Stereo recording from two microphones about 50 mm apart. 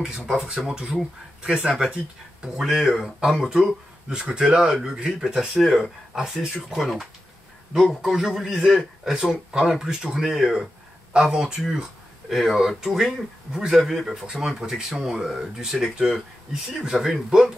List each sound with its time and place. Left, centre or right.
0.7 s a man's voice: centre
5.3 s a man's voice: centre